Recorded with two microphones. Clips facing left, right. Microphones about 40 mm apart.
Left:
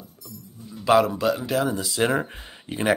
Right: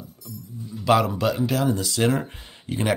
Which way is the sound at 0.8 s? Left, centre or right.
Centre.